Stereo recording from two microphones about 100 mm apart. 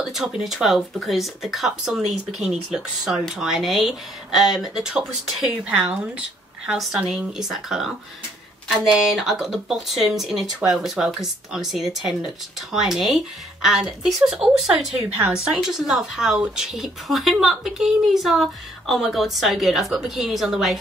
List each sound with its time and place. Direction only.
0.0 s speech: 5° right (ahead or behind)